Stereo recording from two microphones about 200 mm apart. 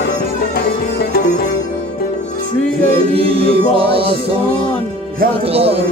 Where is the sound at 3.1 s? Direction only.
30° right (ahead or behind).